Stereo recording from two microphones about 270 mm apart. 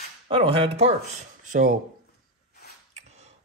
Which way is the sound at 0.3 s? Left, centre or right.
Centre.